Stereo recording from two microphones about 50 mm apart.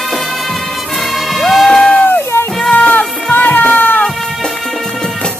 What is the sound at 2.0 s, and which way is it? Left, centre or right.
Music, left.